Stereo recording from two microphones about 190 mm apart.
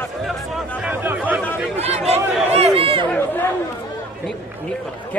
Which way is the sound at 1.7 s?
35° right (ahead or behind).